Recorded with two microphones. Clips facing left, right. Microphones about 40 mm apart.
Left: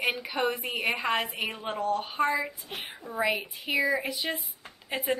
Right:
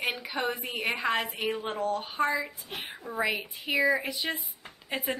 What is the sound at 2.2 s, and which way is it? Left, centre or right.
Speech, centre.